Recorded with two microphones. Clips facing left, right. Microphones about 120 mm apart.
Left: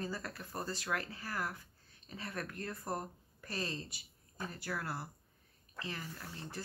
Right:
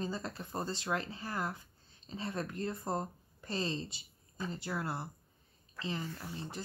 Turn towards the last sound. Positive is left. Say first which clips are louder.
# right 4 dB
turn(degrees=-20)  # may be behind; listen again after turning